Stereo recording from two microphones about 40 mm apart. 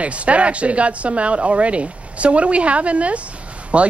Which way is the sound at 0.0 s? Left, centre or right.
Right.